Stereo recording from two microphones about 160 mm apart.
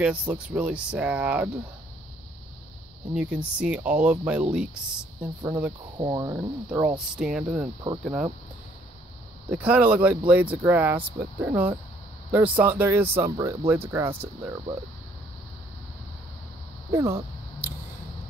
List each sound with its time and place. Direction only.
0.0 s speech: 10° right (ahead or behind)
3.2 s speech: 5° right (ahead or behind)
5.2 s speech: 30° right (ahead or behind)
7.2 s speech: 5° right (ahead or behind)
7.6 s speech: 25° right (ahead or behind)
8.0 s speech: 10° right (ahead or behind)
9.5 s speech: 10° right (ahead or behind)
16.9 s a sound: 15° right (ahead or behind)